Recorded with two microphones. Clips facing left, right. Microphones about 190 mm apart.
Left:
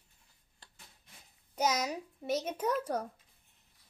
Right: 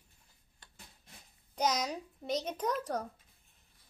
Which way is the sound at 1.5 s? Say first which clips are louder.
Left 1 dB; 5° left (ahead or behind).